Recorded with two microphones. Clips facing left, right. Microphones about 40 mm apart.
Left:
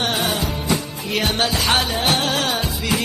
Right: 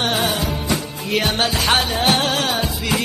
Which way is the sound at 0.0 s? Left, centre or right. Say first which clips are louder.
Right 1 dB; centre.